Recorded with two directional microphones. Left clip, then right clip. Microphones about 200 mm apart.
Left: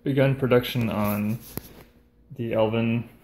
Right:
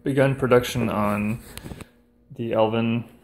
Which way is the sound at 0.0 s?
10° right (ahead or behind).